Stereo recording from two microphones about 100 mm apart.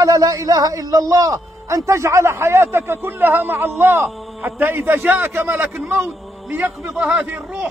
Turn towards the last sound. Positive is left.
turn(degrees=-15)  # may be behind; listen again after turning